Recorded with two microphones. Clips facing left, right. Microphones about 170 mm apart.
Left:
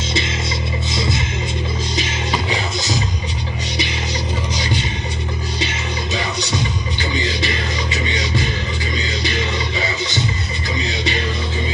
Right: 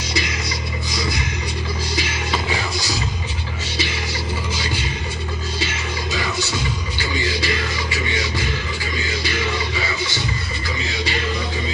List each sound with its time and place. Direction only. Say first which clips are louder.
0.9 s music: left 2 dB; 25° left (ahead or behind)
4.6 s vehicle: left 4 dB; 20° left (ahead or behind)
5.6 s music: left 2 dB; 20° left (ahead or behind)